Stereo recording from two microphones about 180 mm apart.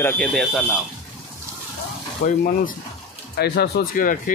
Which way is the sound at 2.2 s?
50° left (ahead or behind).